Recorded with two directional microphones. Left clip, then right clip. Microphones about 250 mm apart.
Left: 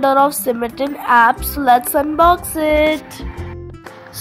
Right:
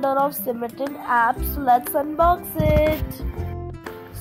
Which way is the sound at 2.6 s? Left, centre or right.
Left.